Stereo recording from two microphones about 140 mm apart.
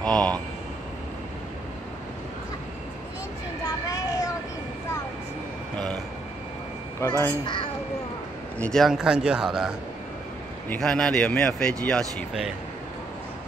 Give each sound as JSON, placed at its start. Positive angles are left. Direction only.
{"t": 0.0, "sound": "vehicle", "side_deg": 5}
{"t": 3.6, "sound": "vehicle", "side_deg": 25}
{"t": 7.0, "sound": "speech", "side_deg": 15}
{"t": 7.4, "sound": "a child's voice", "side_deg": 35}
{"t": 8.5, "sound": "speech", "side_deg": 5}